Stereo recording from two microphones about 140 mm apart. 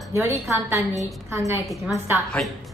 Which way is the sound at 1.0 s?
20° right (ahead or behind).